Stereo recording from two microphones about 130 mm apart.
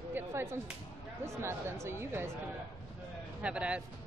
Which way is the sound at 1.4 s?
20° right (ahead or behind).